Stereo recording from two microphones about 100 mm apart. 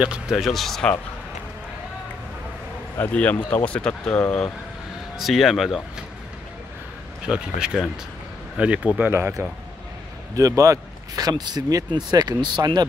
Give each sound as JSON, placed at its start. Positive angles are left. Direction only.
{"t": 0.0, "sound": "speech", "side_deg": -10}
{"t": 3.1, "sound": "speech", "side_deg": 15}
{"t": 5.1, "sound": "speech", "side_deg": 0}
{"t": 7.2, "sound": "speech", "side_deg": -10}
{"t": 9.1, "sound": "speech", "side_deg": -25}